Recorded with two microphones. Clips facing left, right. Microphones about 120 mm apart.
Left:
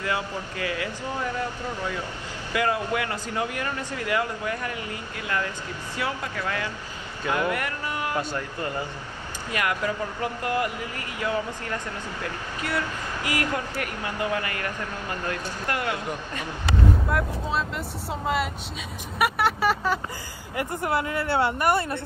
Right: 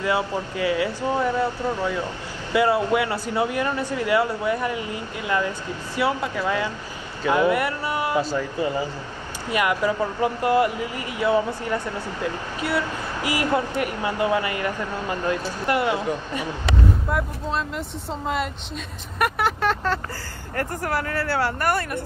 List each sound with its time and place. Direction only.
0.0 s speech: 20° right (ahead or behind)
8.3 s speech: 5° right (ahead or behind)
9.5 s speech: 20° right (ahead or behind)
17.1 s speech: centre (ahead or behind)
19.1 s vehicle: 5° left (ahead or behind)
20.5 s speech: 20° left (ahead or behind)